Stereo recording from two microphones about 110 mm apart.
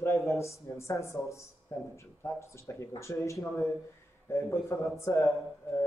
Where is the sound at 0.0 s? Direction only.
25° left (ahead or behind).